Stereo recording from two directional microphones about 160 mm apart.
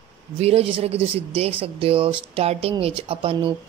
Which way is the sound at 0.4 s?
40° right (ahead or behind).